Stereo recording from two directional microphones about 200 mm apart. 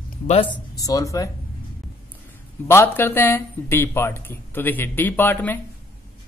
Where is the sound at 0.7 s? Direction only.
15° left (ahead or behind).